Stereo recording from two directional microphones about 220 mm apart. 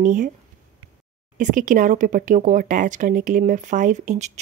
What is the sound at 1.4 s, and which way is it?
Speech, 35° right (ahead or behind).